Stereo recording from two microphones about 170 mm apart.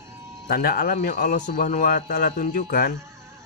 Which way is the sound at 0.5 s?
60° left (ahead or behind).